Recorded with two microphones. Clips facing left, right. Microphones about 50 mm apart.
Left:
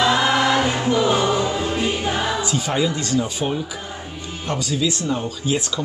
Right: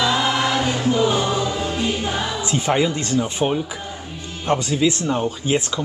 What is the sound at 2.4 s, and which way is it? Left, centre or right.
A man's voice, right.